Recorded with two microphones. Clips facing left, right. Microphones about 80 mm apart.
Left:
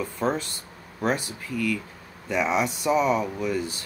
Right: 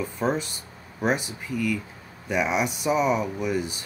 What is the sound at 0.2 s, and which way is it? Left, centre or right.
Speech, centre.